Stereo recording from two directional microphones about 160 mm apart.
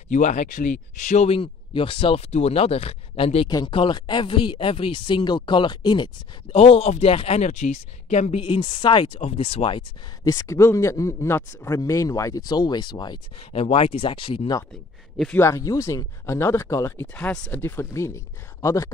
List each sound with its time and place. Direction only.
0.1 s speech: 50° left (ahead or behind)
3.4 s speech: 30° left (ahead or behind)
6.5 s speech: 40° left (ahead or behind)
10.2 s speech: 20° left (ahead or behind)
13.5 s speech: 40° left (ahead or behind)
15.3 s speech: 15° left (ahead or behind)
17.1 s speech: 5° left (ahead or behind)